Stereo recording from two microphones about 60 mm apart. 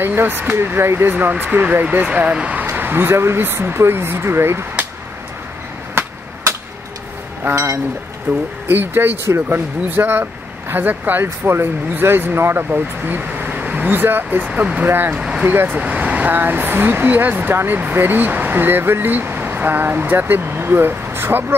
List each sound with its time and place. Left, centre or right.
0.0 s speech: right
1.1 s speech: right
2.6 s speech: right
7.5 s speech: right
8.3 s speech: right
11.2 s speech: right
13.8 s speech: right
14.5 s speech: right
14.9 s speech: right
15.1 s vehicle: centre
15.4 s speech: right
15.8 s speech: right